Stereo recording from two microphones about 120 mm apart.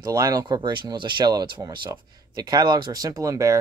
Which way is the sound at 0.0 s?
30° right (ahead or behind).